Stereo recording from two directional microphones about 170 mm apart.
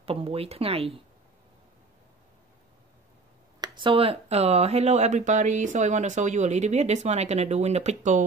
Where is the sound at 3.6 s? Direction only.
30° right (ahead or behind).